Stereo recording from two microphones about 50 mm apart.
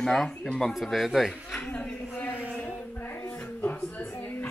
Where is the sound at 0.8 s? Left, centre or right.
Centre.